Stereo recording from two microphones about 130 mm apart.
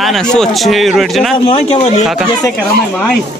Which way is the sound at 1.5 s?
50° left (ahead or behind).